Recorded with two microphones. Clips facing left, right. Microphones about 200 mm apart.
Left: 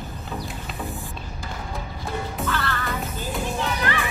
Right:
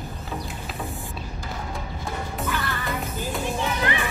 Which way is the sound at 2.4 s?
15° right (ahead or behind).